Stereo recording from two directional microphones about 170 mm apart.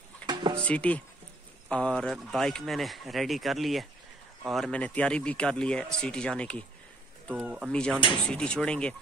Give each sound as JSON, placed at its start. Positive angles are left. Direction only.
{"t": 0.3, "sound": "a sound", "side_deg": -30}
{"t": 0.7, "sound": "speech", "side_deg": 10}
{"t": 7.2, "sound": "speech", "side_deg": -5}
{"t": 7.7, "sound": "speech", "side_deg": 5}